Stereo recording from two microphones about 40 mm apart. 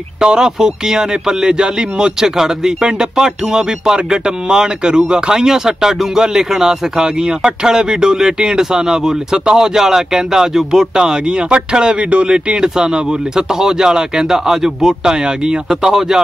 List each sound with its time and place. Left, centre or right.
0.2 s speech: centre
15.8 s speech: centre